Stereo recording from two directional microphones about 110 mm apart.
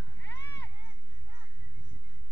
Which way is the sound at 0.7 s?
20° right (ahead or behind).